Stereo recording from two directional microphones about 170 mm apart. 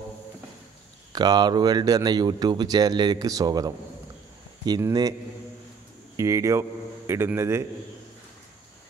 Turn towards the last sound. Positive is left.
turn(degrees=-15)  # may be behind; listen again after turning